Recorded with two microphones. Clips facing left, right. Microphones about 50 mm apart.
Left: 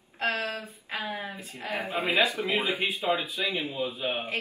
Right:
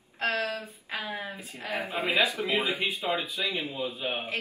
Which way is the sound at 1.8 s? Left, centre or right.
Left.